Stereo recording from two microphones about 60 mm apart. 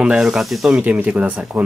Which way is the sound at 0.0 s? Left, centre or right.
Centre.